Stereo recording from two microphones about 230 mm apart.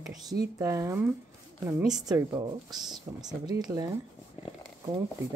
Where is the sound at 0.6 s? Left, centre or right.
Centre.